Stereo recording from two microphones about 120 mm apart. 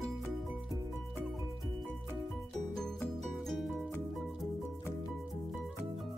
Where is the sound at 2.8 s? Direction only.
5° left (ahead or behind).